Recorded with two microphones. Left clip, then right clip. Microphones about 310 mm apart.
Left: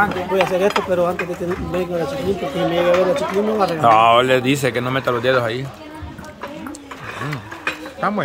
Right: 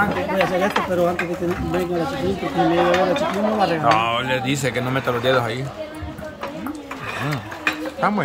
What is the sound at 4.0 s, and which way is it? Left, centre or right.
Speech, centre.